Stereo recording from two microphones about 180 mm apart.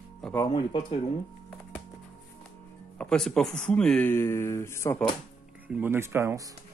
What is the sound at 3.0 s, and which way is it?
Speech, 5° left (ahead or behind).